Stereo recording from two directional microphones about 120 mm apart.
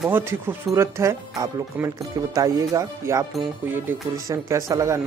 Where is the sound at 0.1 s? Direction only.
20° right (ahead or behind).